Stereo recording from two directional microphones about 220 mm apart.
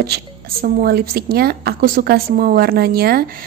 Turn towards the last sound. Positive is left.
turn(degrees=-45)  # may be behind; listen again after turning